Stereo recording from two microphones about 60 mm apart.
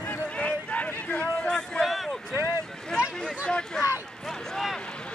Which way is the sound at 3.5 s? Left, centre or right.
Centre.